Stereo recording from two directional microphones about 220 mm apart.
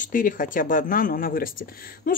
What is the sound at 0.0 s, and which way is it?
Speech, 40° left (ahead or behind).